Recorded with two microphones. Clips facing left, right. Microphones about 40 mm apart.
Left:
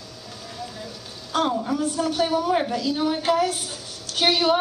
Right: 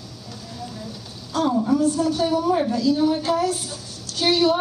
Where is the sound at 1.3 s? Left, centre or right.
Left.